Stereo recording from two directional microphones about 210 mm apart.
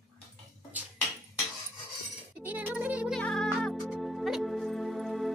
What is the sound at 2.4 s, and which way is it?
Music, 10° right (ahead or behind).